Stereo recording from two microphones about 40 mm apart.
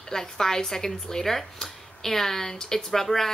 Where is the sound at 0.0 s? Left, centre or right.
Centre.